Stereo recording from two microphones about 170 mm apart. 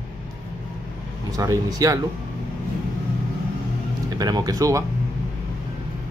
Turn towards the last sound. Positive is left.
turn(degrees=-20)  # may be behind; listen again after turning